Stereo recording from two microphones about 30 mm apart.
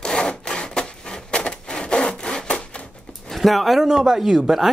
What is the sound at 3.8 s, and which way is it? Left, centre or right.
Speech, centre.